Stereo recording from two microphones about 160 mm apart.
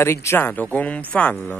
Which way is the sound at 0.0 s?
15° left (ahead or behind).